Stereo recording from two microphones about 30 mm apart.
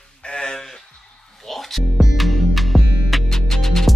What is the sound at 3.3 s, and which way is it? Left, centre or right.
Music, centre.